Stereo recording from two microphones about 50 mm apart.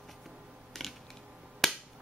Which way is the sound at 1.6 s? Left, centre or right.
Centre.